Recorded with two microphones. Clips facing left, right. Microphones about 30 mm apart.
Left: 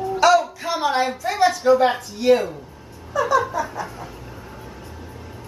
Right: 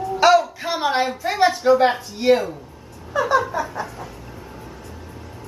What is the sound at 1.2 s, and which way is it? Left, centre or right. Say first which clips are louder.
A woman's voice: right 1 dB; centre.